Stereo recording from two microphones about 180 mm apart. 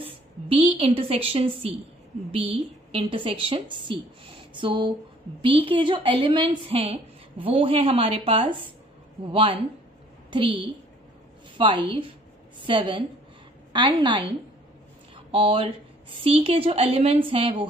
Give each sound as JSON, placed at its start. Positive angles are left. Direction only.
{"t": 0.0, "sound": "a woman's voice", "side_deg": -30}
{"t": 11.5, "sound": "a woman's voice", "side_deg": -30}
{"t": 15.3, "sound": "a woman's voice", "side_deg": -30}